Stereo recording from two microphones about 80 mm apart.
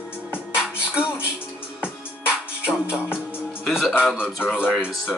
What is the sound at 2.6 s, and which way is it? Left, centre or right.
Music, centre.